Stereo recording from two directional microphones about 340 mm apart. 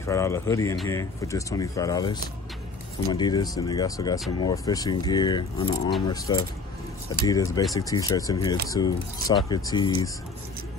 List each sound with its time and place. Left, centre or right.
0.0 s speech: centre